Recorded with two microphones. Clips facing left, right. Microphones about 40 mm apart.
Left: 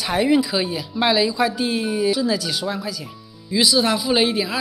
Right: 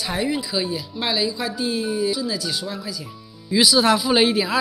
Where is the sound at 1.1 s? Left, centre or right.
Left.